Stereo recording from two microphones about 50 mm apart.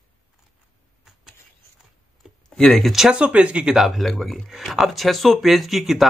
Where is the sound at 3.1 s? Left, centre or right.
Right.